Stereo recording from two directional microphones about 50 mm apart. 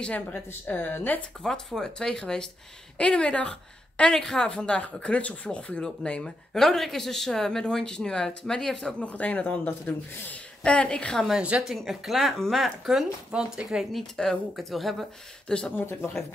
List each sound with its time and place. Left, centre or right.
0.7 s speech: left
1.1 s speech: left
1.4 s a woman's voice: centre
6.5 s speech: centre
9.1 s a woman's voice: left
10.6 s a woman's voice: left
11.3 s a woman's voice: right
11.6 s speech: centre
13.9 s speech: centre
15.4 s speech: centre
15.7 s speech: left